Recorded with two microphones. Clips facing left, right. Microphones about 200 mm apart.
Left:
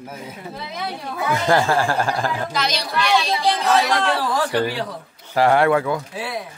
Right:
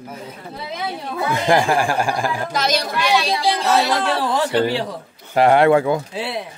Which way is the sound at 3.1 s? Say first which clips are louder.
Right 1 dB; 10° right (ahead or behind).